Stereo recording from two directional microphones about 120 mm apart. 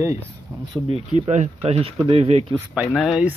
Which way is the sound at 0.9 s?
65° right (ahead or behind).